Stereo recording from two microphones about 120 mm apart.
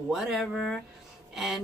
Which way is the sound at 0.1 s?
Centre (ahead or behind).